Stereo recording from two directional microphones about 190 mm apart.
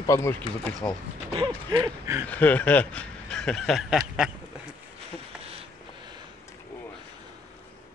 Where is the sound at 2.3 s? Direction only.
10° left (ahead or behind).